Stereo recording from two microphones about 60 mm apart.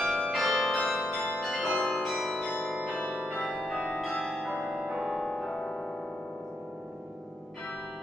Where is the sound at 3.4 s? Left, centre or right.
Left.